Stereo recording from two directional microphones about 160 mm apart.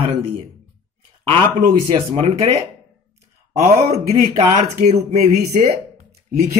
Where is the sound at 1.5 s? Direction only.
40° right (ahead or behind).